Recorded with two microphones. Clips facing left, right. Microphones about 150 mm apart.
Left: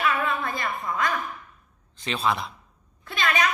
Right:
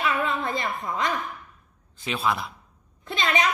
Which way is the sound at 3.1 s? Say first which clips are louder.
Even; 25° right (ahead or behind).